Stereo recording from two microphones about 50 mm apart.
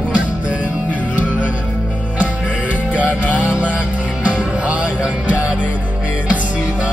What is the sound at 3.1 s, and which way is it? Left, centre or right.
Music, left.